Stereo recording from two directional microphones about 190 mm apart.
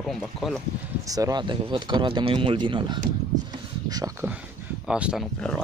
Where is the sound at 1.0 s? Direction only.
20° right (ahead or behind).